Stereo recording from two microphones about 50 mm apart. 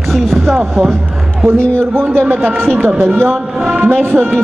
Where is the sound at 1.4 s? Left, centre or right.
Right.